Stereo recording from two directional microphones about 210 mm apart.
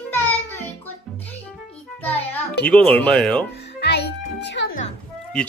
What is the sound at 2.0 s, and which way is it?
Music, 5° left (ahead or behind).